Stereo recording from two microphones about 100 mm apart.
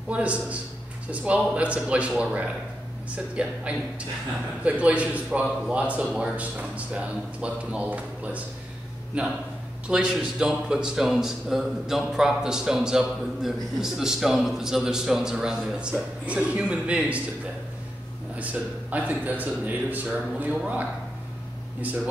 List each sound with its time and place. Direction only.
0.1 s a man's voice: 15° right (ahead or behind)
4.6 s a man's voice: 15° right (ahead or behind)
18.3 s a man's voice: 15° right (ahead or behind)